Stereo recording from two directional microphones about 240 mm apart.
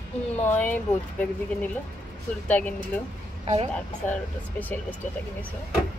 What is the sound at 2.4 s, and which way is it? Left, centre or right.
Speech, centre.